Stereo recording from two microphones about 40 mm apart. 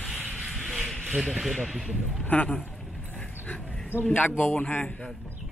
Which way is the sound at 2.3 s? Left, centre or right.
Left.